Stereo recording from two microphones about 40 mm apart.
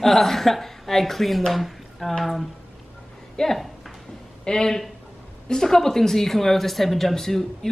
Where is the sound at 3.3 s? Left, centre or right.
Centre.